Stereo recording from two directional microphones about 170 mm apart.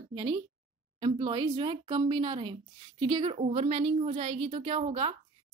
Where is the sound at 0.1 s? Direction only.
30° right (ahead or behind).